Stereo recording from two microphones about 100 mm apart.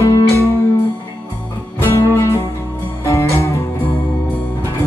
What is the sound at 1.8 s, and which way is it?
Music, 25° left (ahead or behind).